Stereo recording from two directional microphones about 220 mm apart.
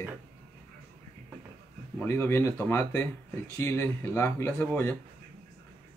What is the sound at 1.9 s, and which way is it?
Speech, 10° left (ahead or behind).